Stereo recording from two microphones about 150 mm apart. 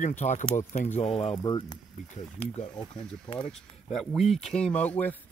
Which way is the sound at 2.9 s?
35° left (ahead or behind).